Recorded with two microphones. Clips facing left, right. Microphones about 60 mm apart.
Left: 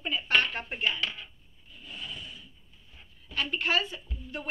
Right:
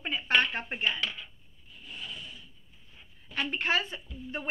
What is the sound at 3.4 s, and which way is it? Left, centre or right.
A woman's voice, right.